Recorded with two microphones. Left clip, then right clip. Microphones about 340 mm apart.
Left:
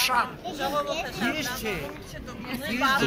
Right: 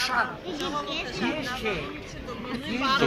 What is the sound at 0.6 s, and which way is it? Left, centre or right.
Speech, left.